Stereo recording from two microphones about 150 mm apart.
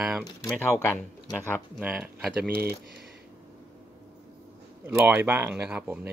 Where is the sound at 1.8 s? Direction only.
5° right (ahead or behind).